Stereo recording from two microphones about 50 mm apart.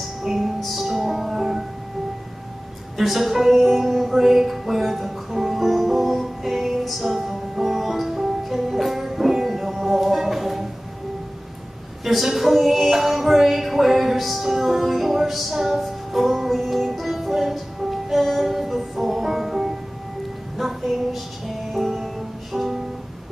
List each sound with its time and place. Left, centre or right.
0.2 s music: centre
3.0 s music: centre
12.0 s music: centre